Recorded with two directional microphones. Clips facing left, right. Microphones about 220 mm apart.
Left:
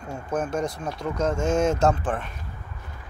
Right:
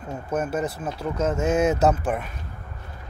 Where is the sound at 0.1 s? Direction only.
5° right (ahead or behind).